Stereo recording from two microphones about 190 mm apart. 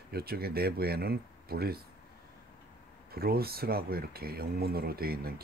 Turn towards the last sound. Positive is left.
turn(degrees=-55)  # may be behind; listen again after turning